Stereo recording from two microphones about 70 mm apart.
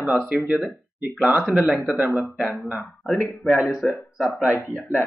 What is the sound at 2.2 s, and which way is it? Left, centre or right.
Speech, centre.